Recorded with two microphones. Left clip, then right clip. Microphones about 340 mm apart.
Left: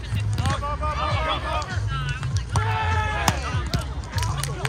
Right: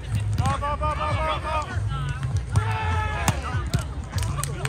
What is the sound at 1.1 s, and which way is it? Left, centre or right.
Run, left.